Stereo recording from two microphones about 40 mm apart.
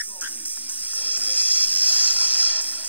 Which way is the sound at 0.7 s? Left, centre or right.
Right.